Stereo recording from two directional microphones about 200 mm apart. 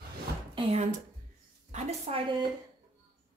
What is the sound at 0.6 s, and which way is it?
A woman's voice, 30° right (ahead or behind).